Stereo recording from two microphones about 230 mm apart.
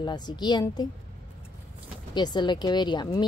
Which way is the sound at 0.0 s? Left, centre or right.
Centre.